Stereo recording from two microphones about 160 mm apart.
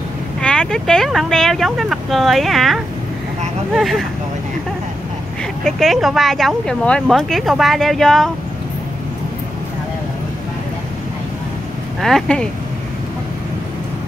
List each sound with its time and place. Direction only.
0.4 s speech: 5° left (ahead or behind)
5.6 s speech: 5° left (ahead or behind)
12.0 s speech: centre (ahead or behind)